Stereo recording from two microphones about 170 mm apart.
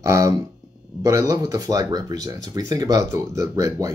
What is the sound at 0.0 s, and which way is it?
Speech, 20° right (ahead or behind).